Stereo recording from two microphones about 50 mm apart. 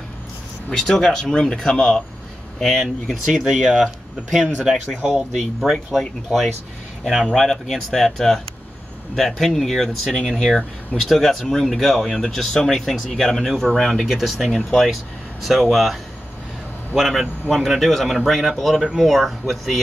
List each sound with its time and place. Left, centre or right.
0.7 s speech: centre
2.6 s speech: centre